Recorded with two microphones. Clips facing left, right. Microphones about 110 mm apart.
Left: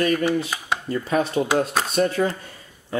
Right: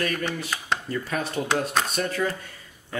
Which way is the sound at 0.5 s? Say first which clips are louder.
Left 1 dB; 10° left (ahead or behind).